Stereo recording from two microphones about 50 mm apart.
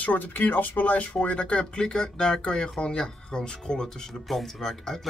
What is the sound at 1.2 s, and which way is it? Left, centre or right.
Speech, left.